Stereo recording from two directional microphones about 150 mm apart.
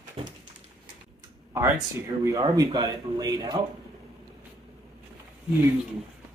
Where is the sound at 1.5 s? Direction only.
15° right (ahead or behind).